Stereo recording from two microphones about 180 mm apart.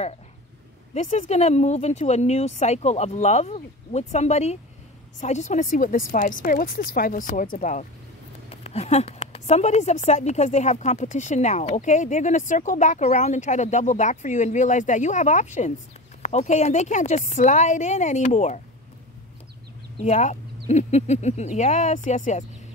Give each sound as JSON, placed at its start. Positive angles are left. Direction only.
{"t": 0.9, "sound": "a woman's voice", "side_deg": 40}
{"t": 20.1, "sound": "a woman's voice", "side_deg": 40}